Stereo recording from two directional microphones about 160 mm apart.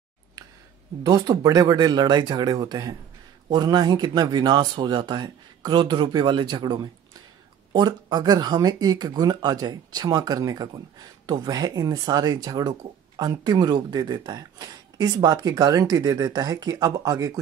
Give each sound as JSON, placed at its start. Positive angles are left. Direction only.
{"t": 1.0, "sound": "speech", "side_deg": -20}